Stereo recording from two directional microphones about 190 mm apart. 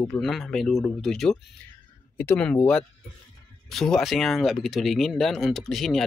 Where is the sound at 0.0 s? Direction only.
5° left (ahead or behind).